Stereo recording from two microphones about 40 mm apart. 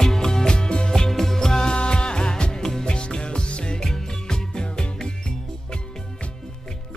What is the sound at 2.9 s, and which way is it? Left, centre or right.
Music, left.